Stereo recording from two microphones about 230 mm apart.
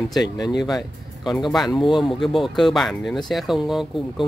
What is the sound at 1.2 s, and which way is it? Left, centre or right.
Speech, centre.